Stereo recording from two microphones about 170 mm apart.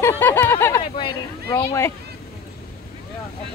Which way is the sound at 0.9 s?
30° left (ahead or behind).